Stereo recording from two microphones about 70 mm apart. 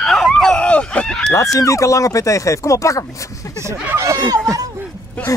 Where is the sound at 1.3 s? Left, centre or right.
Left.